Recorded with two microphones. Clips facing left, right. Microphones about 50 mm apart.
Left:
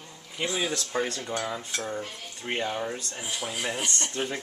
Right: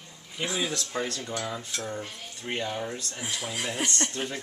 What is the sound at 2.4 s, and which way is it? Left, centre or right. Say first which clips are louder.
Speech: left 2 dB; centre.